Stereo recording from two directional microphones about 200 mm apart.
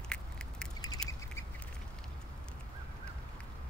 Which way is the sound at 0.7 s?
20° left (ahead or behind).